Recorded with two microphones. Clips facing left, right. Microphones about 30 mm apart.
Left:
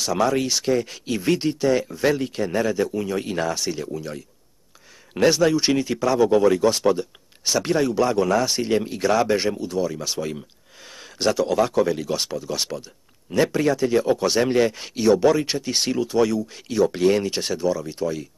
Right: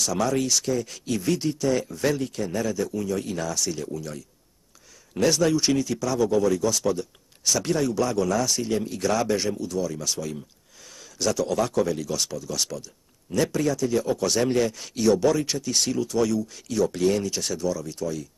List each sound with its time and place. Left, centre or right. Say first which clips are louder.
0.0 s speech: left 3 dB; left